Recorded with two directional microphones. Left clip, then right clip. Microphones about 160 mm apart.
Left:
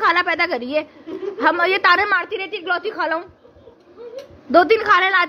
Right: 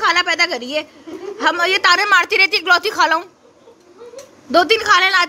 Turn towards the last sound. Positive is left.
turn(degrees=0)  # may be behind; listen again after turning